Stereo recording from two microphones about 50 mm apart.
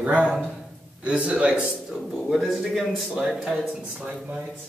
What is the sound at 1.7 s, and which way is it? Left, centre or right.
A man's voice, centre.